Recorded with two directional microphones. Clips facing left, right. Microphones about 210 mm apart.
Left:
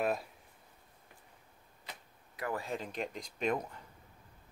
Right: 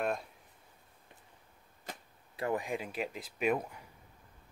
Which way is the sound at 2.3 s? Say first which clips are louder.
Right 4 dB; 25° right (ahead or behind).